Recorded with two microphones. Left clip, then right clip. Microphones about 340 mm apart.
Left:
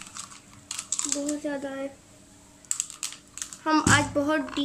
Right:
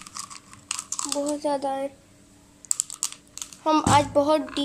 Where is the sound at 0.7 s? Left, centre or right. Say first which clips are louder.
Right 1 dB; centre.